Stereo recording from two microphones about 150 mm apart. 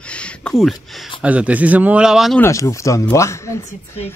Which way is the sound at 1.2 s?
10° right (ahead or behind).